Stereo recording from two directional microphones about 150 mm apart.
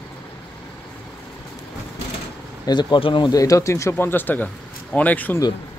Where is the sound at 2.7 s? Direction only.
30° left (ahead or behind); by 5.4 s 10° left (ahead or behind).